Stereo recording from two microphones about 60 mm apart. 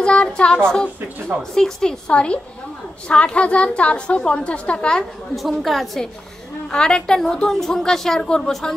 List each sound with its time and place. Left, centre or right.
0.0 s a child's voice: centre
5.3 s a woman's voice: centre
6.7 s a woman's voice: centre